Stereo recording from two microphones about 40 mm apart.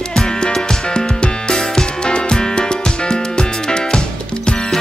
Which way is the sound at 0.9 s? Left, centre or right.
Left.